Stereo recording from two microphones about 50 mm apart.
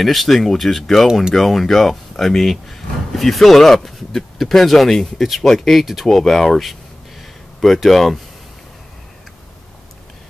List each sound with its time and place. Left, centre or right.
0.0 s speech: centre